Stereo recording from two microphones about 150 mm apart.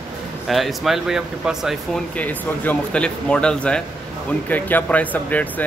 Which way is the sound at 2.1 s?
10° left (ahead or behind).